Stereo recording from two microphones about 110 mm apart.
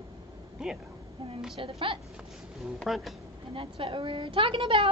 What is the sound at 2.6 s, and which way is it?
Speech, centre (ahead or behind).